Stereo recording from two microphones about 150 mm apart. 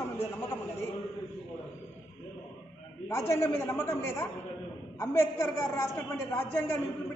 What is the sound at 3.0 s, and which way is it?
A woman's voice, 15° left (ahead or behind).